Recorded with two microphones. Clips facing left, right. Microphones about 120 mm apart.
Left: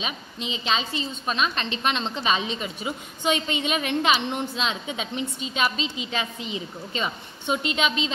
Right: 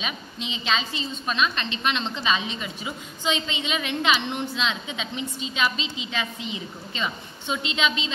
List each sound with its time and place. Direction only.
0.0 s a woman's voice: 35° left (ahead or behind)
3.4 s a woman's voice: 45° left (ahead or behind)